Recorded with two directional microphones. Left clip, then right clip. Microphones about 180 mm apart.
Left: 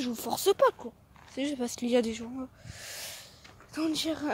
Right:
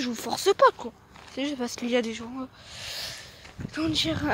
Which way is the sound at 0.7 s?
5° right (ahead or behind).